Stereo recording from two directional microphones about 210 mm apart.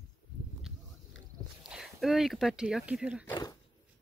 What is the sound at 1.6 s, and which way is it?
Speech, centre (ahead or behind).